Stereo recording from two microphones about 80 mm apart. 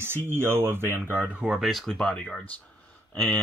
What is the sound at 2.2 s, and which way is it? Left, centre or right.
Speech, centre.